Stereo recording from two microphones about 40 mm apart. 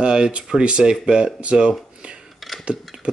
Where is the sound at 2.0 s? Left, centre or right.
Right.